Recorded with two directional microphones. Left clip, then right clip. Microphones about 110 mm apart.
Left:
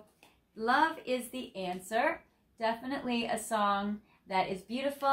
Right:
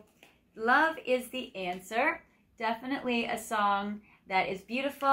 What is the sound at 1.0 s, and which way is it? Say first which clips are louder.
A woman's voice: right 5 dB; 15° left (ahead or behind).